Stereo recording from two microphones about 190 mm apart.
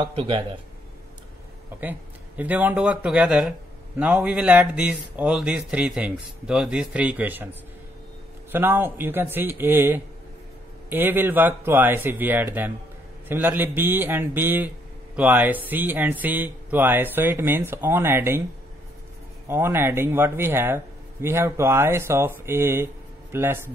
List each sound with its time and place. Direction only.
0.0 s speech: 30° right (ahead or behind)
1.8 s a man's voice: 10° right (ahead or behind)
8.5 s a man's voice: 10° right (ahead or behind)
19.4 s a man's voice: 10° right (ahead or behind)